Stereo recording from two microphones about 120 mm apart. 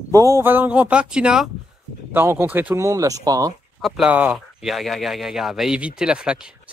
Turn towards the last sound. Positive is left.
turn(degrees=-10)  # may be behind; listen again after turning